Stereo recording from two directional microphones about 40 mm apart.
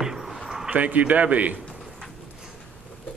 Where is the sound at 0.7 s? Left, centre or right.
Right.